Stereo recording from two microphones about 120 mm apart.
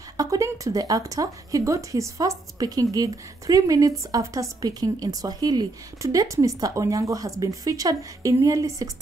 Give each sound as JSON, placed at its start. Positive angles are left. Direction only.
{"t": 0.2, "sound": "a woman's voice", "side_deg": -30}